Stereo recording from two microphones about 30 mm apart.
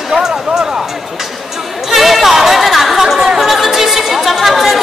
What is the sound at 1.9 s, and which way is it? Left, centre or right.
Chatter, centre.